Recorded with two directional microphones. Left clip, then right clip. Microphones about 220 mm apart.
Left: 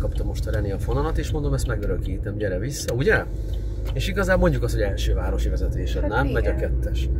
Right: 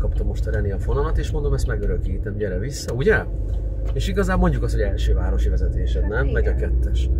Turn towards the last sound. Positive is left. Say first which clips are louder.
# left 1 dB
turn(degrees=-10)  # may be behind; listen again after turning